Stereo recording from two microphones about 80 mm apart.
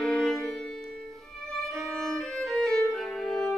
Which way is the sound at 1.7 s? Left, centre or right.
Centre.